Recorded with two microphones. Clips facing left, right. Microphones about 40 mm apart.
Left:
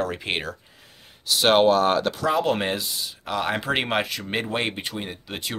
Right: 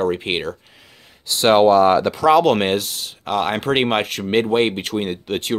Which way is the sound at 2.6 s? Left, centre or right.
Right.